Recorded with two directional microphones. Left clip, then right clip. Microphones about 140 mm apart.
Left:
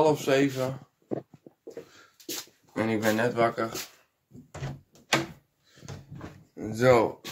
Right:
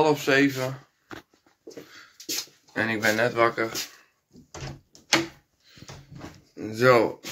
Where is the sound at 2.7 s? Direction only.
10° left (ahead or behind).